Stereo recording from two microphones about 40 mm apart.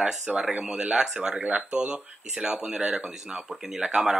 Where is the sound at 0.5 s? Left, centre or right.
Right.